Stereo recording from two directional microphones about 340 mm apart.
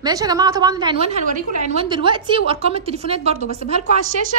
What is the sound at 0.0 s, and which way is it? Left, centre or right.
A woman's voice, centre.